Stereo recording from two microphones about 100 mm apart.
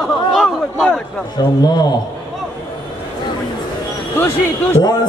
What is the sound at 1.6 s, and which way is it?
Speech, 45° left (ahead or behind).